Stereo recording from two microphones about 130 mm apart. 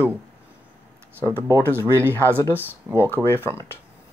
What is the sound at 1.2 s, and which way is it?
Speech, 20° right (ahead or behind).